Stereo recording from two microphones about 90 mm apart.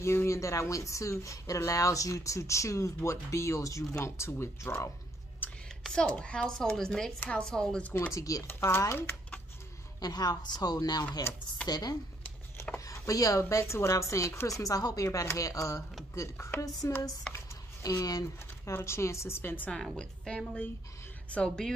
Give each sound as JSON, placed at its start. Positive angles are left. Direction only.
{"t": 0.0, "sound": "speech", "side_deg": 30}
{"t": 5.4, "sound": "a sound", "side_deg": 20}
{"t": 6.0, "sound": "speech", "side_deg": 10}
{"t": 8.1, "sound": "speech", "side_deg": 40}
{"t": 8.5, "sound": "speech", "side_deg": 25}
{"t": 9.9, "sound": "speech", "side_deg": 45}
{"t": 12.7, "sound": "speech", "side_deg": 35}
{"t": 18.7, "sound": "speech", "side_deg": 30}
{"t": 19.7, "sound": "speech", "side_deg": 10}